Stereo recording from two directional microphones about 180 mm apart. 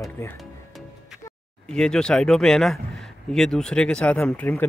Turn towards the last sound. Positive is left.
turn(degrees=10)  # may be behind; listen again after turning